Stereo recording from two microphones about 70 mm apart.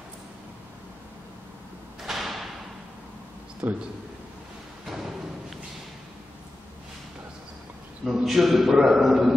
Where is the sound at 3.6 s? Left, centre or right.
Centre.